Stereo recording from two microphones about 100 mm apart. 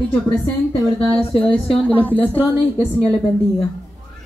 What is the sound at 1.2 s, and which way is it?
Speech, 65° left (ahead or behind).